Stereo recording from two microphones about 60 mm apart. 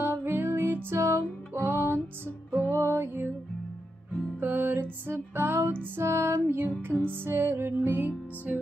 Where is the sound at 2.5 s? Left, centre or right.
Left.